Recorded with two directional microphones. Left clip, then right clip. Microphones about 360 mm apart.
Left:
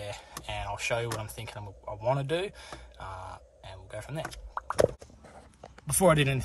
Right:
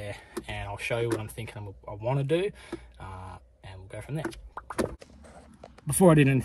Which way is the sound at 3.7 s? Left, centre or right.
Centre.